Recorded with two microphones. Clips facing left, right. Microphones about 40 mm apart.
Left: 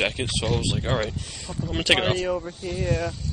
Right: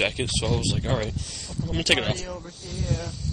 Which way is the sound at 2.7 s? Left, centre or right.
Centre.